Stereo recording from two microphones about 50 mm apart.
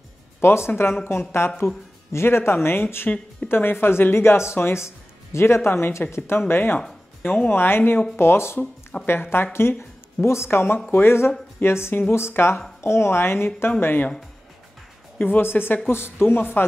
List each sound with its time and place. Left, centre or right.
0.4 s speech: left
6.4 s speech: left
9.2 s speech: left
15.1 s speech: left